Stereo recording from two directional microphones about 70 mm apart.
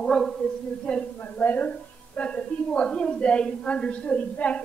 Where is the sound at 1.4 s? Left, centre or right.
Left.